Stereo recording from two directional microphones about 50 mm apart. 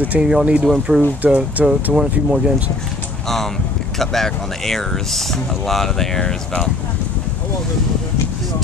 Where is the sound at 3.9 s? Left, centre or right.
Centre.